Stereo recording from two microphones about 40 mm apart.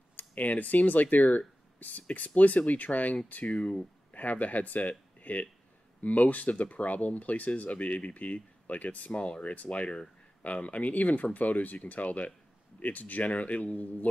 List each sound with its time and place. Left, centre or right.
0.1 s speech: left
3.5 s speech: left
4.1 s speech: left